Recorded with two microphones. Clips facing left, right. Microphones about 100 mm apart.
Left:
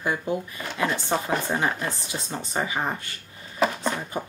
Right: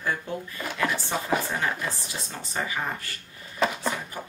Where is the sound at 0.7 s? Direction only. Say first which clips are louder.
Left 3 dB; 25° left (ahead or behind).